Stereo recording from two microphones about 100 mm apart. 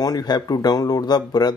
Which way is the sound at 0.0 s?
40° left (ahead or behind).